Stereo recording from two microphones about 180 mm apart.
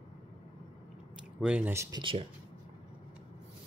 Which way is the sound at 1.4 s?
10° right (ahead or behind).